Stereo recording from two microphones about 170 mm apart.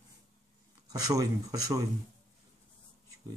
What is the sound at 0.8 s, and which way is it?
Speech, 20° right (ahead or behind).